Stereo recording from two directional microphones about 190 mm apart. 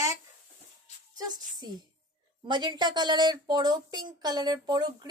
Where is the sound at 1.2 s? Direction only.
20° right (ahead or behind).